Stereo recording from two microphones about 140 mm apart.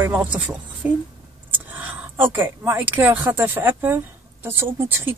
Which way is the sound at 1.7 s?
10° right (ahead or behind).